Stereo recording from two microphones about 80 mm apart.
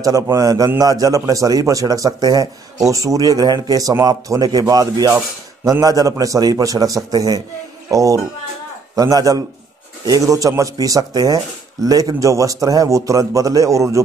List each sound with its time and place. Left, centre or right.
0.0 s speech: right